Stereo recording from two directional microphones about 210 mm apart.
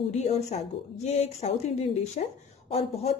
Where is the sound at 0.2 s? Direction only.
30° left (ahead or behind).